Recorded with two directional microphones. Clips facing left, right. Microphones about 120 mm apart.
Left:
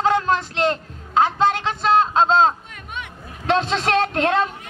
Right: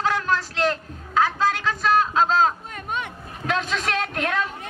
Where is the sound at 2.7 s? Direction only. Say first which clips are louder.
Right 4 dB; 40° right (ahead or behind).